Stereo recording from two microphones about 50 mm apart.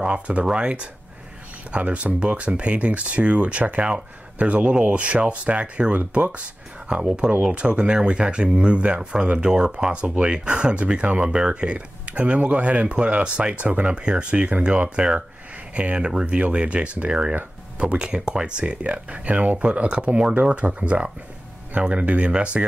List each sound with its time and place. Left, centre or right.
0.0 s speech: right